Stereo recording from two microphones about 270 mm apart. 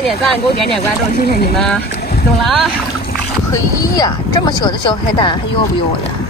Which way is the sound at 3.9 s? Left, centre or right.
Centre.